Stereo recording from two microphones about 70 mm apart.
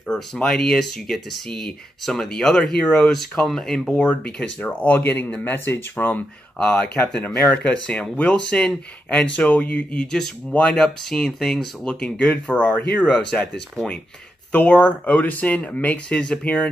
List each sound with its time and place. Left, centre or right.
0.4 s speech: centre
4.6 s speech: left; by 11.7 s centre
11.8 s speech: centre
14.5 s speech: centre